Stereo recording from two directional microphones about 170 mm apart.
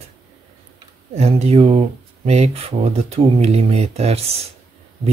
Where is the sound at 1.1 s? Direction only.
40° right (ahead or behind).